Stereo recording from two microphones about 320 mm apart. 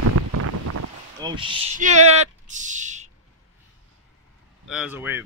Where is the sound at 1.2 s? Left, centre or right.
Centre.